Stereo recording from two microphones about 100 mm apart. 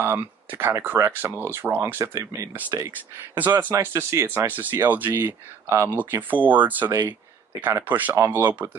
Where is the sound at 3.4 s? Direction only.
20° right (ahead or behind).